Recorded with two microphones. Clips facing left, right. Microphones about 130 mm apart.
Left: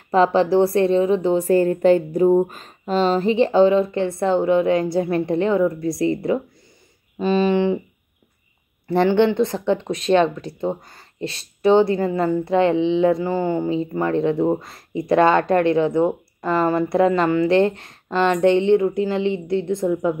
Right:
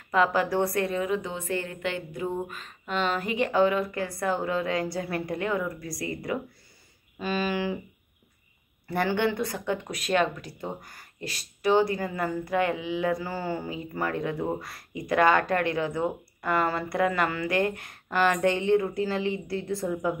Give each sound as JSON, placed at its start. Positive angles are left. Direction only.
{"t": 0.1, "sound": "speech", "side_deg": 30}
{"t": 8.8, "sound": "speech", "side_deg": 25}